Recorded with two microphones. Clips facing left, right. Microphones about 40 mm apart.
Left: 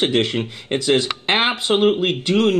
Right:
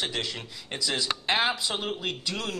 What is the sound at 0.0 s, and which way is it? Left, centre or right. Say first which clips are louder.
Speech: left 13 dB; left.